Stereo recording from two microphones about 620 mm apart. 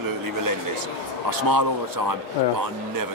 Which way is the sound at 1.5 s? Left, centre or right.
Right.